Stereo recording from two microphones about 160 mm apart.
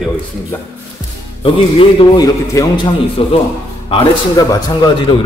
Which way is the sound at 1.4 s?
35° left (ahead or behind).